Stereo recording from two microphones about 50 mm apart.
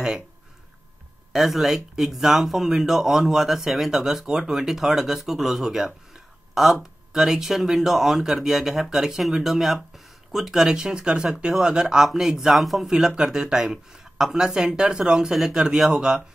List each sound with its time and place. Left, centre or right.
1.3 s speech: centre
12.9 s speech: centre